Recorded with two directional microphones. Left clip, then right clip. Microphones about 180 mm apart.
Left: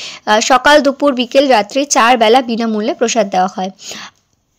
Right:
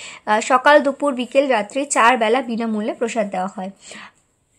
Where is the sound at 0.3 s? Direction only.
25° left (ahead or behind).